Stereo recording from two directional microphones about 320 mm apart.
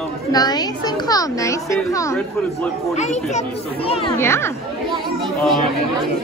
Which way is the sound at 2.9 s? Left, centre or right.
Left.